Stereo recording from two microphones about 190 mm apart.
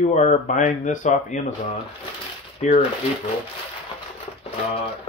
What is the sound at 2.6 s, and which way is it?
Speech, 35° left (ahead or behind).